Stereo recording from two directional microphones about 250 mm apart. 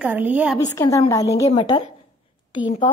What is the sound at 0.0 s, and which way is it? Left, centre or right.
Speech, centre.